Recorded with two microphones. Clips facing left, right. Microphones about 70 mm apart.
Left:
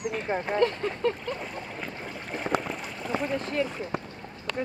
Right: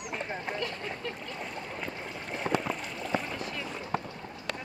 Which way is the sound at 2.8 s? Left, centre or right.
Centre.